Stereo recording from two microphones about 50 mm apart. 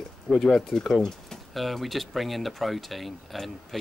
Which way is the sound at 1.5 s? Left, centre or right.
Centre.